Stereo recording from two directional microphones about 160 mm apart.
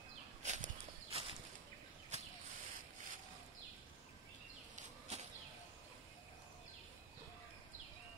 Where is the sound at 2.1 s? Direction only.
45° right (ahead or behind).